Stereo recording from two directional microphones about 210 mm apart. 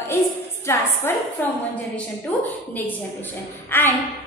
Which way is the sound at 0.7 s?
15° left (ahead or behind).